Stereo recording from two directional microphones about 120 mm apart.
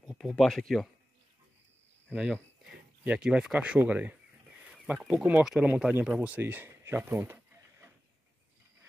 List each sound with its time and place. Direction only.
0.0 s speech: centre (ahead or behind)
3.0 s speech: 10° right (ahead or behind)